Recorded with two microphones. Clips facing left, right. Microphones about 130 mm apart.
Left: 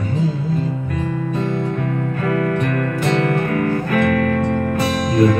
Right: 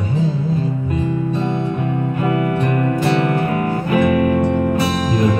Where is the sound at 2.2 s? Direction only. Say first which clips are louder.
Even; 20° right (ahead or behind).